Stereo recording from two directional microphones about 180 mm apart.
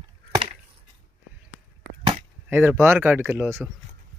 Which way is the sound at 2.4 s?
10° right (ahead or behind).